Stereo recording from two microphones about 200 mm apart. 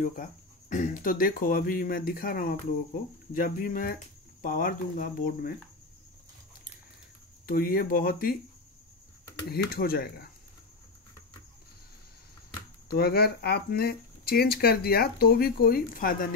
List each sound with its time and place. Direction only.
0.0 s speech: 40° left (ahead or behind)
7.4 s speech: 45° left (ahead or behind)
9.5 s speech: 50° left (ahead or behind)
12.8 s speech: 50° left (ahead or behind)